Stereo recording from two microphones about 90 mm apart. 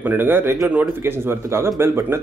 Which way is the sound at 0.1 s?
25° right (ahead or behind).